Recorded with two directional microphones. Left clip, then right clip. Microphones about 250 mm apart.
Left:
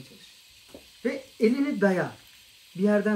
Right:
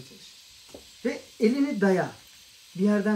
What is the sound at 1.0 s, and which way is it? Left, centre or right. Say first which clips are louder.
Speech: left 1 dB; centre.